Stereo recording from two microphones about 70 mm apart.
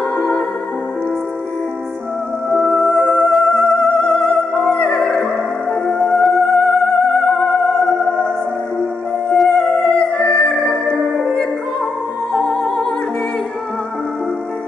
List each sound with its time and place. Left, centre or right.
2.5 s music: centre
9.3 s music: centre
9.8 s music: centre
11.0 s music: centre